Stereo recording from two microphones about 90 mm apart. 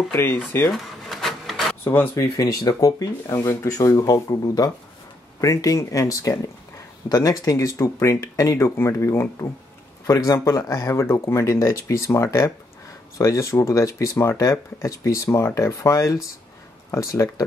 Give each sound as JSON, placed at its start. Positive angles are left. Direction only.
{"t": 0.1, "sound": "speech", "side_deg": 25}
{"t": 0.7, "sound": "a sound", "side_deg": 5}
{"t": 1.9, "sound": "speech", "side_deg": 30}
{"t": 2.3, "sound": "speech", "side_deg": 45}